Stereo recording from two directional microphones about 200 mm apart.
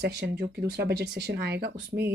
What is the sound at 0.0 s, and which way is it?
Speech, 55° right (ahead or behind).